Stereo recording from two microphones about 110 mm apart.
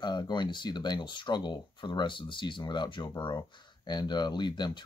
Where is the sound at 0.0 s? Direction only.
40° left (ahead or behind).